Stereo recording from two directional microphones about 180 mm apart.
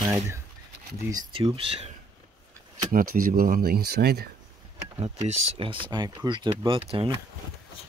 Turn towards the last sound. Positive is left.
turn(degrees=-30)  # may be behind; listen again after turning